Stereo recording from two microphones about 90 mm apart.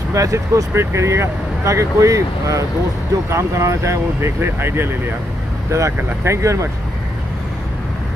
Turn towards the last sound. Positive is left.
turn(degrees=-35)  # may be behind; listen again after turning